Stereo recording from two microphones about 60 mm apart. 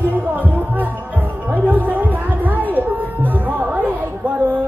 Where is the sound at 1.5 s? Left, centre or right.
Right.